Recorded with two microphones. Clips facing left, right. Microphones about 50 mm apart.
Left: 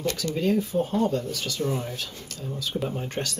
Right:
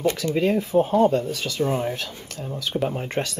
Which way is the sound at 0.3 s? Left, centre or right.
Right.